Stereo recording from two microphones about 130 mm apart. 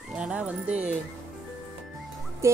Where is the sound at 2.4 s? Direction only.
20° right (ahead or behind).